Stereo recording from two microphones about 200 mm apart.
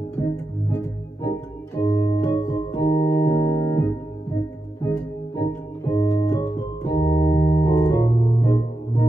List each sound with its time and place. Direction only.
1.2 s organ: 15° left (ahead or behind)